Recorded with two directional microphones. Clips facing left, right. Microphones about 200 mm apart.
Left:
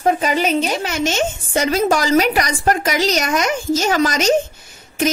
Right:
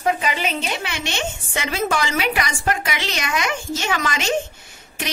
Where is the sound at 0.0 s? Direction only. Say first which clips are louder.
Left 5 dB; 40° left (ahead or behind).